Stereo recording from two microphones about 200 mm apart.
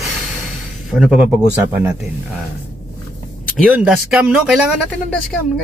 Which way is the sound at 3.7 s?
5° right (ahead or behind).